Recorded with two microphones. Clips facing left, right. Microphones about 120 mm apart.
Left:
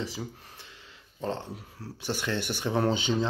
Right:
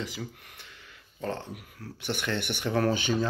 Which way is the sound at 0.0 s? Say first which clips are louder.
Left 1 dB; 30° left (ahead or behind).